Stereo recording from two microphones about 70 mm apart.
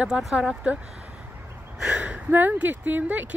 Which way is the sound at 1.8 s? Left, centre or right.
Centre.